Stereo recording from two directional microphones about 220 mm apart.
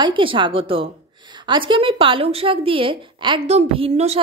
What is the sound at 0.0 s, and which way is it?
A woman's voice, 25° right (ahead or behind).